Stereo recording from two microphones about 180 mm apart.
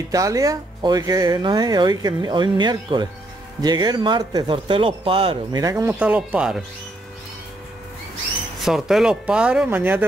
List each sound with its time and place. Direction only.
0.1 s speech: 20° right (ahead or behind)
5.9 s speech: 5° right (ahead or behind)
8.6 s speech: centre (ahead or behind)